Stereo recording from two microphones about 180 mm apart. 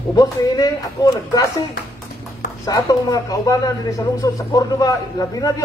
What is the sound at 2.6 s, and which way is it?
A man's voice, 20° left (ahead or behind).